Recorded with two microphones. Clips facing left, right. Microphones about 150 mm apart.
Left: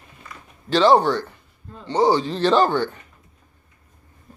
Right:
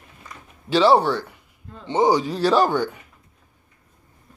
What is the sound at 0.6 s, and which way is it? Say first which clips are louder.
A man's voice: left 1 dB; 10° right (ahead or behind).